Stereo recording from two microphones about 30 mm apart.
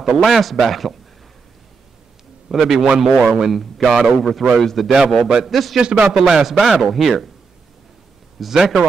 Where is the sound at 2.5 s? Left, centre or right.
Centre.